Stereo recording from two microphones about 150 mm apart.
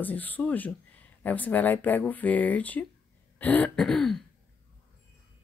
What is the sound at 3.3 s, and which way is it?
Throat clearing, 10° left (ahead or behind).